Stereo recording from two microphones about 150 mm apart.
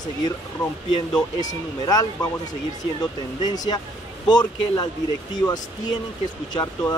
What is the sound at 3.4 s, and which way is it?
Speech, 25° left (ahead or behind).